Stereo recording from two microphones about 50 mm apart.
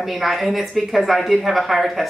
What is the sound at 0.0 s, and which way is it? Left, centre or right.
Speech, centre.